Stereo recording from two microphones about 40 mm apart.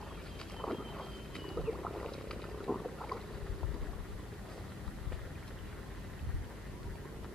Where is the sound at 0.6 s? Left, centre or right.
Centre.